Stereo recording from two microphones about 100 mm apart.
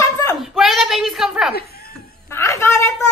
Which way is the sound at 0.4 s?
Centre (ahead or behind).